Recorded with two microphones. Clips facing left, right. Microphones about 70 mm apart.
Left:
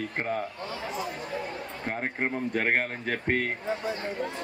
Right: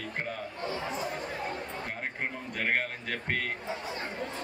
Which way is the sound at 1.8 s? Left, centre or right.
Left.